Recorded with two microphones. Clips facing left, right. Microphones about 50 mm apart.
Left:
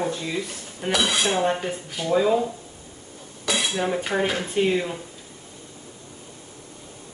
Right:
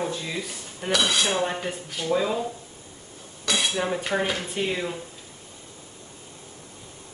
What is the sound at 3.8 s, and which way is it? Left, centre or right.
Speech, centre.